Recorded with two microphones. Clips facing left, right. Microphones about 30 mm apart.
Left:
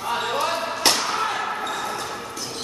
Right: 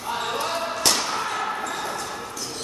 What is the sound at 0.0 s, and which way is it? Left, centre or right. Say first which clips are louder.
Basketball bounce: left 3 dB; centre.